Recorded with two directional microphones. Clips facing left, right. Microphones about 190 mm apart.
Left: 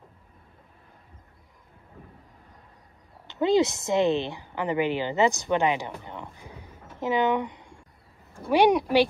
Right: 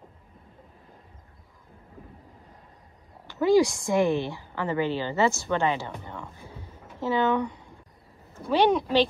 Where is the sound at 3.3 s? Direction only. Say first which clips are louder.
Right 2 dB; 20° left (ahead or behind).